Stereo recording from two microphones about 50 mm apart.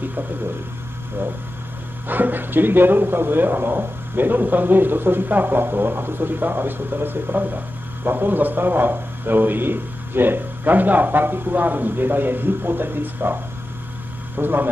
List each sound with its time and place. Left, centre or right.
2.0 s a man's voice: right